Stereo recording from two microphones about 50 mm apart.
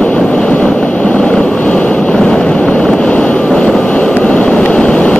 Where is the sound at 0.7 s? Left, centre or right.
Left.